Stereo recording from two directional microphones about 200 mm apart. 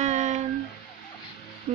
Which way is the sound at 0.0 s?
35° right (ahead or behind).